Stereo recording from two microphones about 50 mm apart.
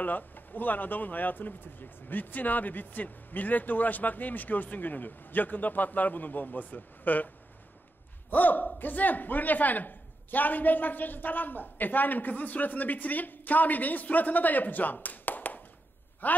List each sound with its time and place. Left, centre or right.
0.0 s speech: left
8.3 s speech: left